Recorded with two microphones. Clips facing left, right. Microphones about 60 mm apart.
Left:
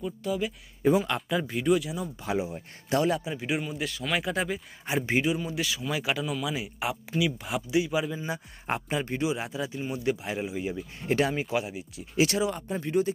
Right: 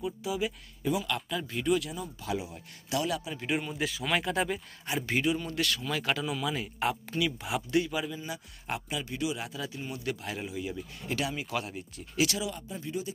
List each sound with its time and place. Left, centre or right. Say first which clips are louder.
0.0 s speech: left 2 dB; centre
0.8 s speech: left 7 dB; left
1.5 s speech: left 2 dB; centre
2.2 s speech: left 5 dB; left
3.3 s speech: left 1 dB; centre
4.8 s speech: left 4 dB; left
5.2 s speech: left 1 dB; centre
7.7 s speech: left 3 dB; centre
8.1 s speech: left 5 dB; left
12.6 s speech: left 9 dB; left